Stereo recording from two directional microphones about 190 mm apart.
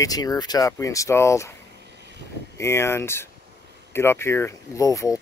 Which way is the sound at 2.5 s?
15° left (ahead or behind).